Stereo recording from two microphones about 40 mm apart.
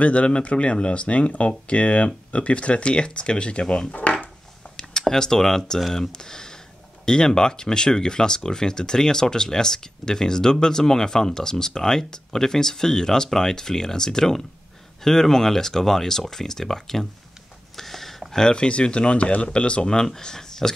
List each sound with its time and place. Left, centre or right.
0.0 s speech: left
3.9 s dishes: left
5.0 s speech: centre
17.7 s a sound: centre
18.3 s speech: centre